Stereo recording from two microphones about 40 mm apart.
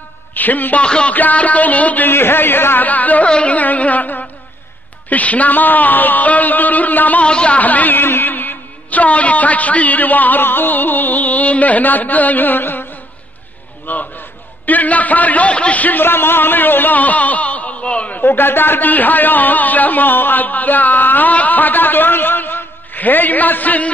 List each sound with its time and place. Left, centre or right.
0.3 s a man's voice: left
0.8 s a woman's voice: left
1.1 s a man's voice: left
2.0 s speech: left
2.9 s a man's voice: left
3.3 s a man's voice: left
7.2 s a woman's voice: left
7.5 s a man's voice: left
8.0 s a man's voice: left
13.8 s a sound: left
14.7 s a man's voice: left
15.8 s a man's voice: left
16.1 s speech: left
18.2 s a man's voice: left